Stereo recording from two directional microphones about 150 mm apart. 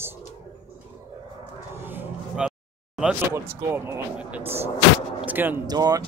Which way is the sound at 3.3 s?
15° right (ahead or behind).